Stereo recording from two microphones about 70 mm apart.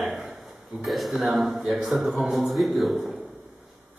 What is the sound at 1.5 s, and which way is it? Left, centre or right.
Speech, centre.